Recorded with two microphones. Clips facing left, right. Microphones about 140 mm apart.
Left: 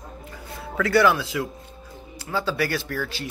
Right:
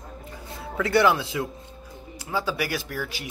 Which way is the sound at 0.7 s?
20° right (ahead or behind).